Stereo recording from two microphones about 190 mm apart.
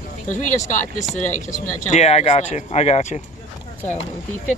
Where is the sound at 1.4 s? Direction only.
40° left (ahead or behind).